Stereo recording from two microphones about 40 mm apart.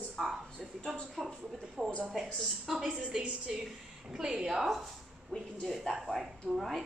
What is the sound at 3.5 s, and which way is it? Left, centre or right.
A woman's voice, centre.